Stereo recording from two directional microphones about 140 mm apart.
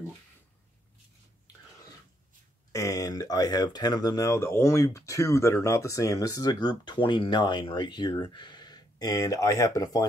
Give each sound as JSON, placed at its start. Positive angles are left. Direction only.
{"t": 2.7, "sound": "speech", "side_deg": 25}